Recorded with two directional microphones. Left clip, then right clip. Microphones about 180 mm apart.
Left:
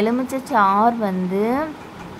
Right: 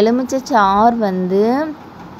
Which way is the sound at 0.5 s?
20° right (ahead or behind).